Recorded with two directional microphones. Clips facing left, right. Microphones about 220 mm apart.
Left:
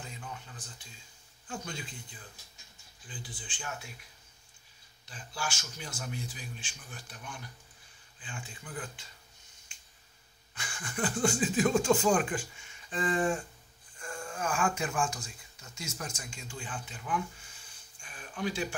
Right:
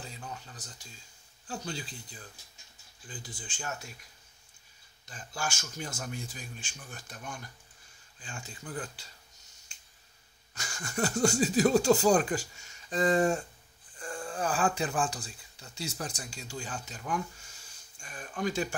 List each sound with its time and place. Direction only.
0.0 s a sound: 35° right (ahead or behind)
1.5 s speech: 35° right (ahead or behind)
5.0 s speech: 45° right (ahead or behind)
10.5 s speech: 40° right (ahead or behind)